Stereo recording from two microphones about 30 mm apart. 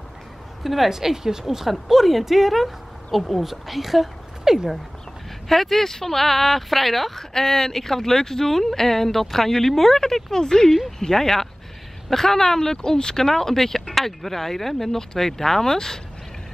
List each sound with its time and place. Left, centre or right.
0.8 s speech: centre
1.7 s speech: centre
4.5 s speech: centre
5.5 s speech: centre
9.9 s speech: centre
11.1 s speech: centre